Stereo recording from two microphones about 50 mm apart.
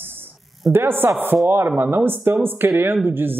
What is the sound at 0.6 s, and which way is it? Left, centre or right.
A man's voice, right.